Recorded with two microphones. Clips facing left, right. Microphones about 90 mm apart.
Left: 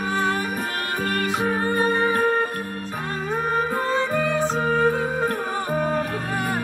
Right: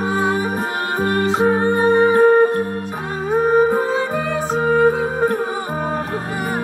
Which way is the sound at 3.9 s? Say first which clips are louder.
Right 2 dB; 5° right (ahead or behind).